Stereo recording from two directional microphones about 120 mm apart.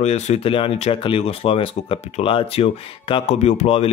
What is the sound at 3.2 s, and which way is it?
Speech, 70° left (ahead or behind).